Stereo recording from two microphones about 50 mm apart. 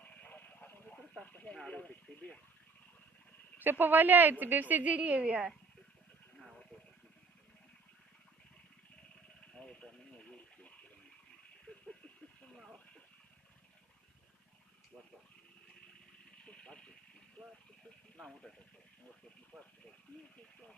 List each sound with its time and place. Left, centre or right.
0.0 s a sound: left
1.2 s speech: left
3.5 s a woman's voice: right
9.5 s a sound: centre
16.3 s vehicle: centre
17.4 s speech: centre
18.1 s speech: centre